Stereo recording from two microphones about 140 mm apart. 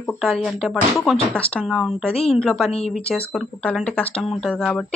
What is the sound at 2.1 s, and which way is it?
Speech, 45° left (ahead or behind).